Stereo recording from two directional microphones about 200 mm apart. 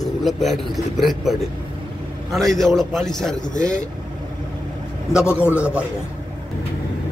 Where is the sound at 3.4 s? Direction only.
40° left (ahead or behind).